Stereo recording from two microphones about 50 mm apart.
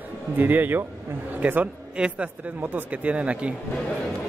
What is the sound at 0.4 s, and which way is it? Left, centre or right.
A man's voice, right.